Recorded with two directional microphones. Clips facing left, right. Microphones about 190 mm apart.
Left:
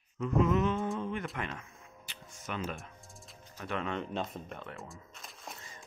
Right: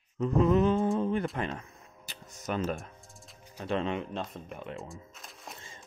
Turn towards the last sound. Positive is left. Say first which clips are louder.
# right 2 dB
turn(degrees=-25)  # may be behind; listen again after turning